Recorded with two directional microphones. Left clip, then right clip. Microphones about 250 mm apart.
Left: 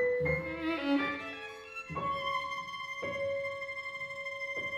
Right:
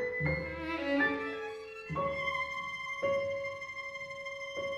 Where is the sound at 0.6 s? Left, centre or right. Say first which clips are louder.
Left 2 dB; left.